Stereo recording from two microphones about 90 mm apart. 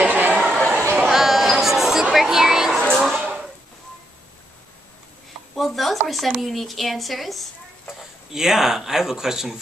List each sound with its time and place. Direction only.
0.0 s chatter: 15° right (ahead or behind)
0.4 s chatter: centre (ahead or behind)
1.0 s a sound: 5° right (ahead or behind)
5.6 s speech: centre (ahead or behind)